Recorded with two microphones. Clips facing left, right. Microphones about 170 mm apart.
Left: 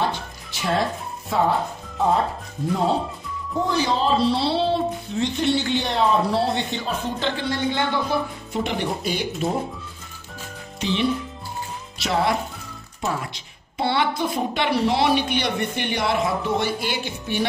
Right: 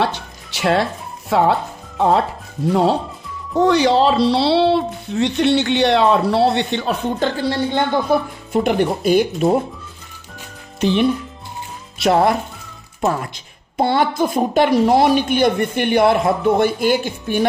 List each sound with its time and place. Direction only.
0.0 s music: 75° right (ahead or behind)
1.3 s speech: 75° right (ahead or behind)
3.5 s speech: 80° right
7.2 s speech: 40° right (ahead or behind)
8.6 s speech: 50° right (ahead or behind)
10.8 s speech: 55° right (ahead or behind)